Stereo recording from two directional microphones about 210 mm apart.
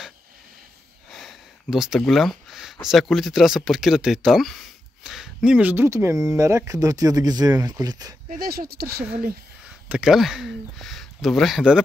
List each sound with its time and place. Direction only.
1.1 s speech: centre (ahead or behind); by 8.2 s 15° right (ahead or behind)
8.3 s speech: 45° right (ahead or behind)
9.8 s speech: 5° right (ahead or behind)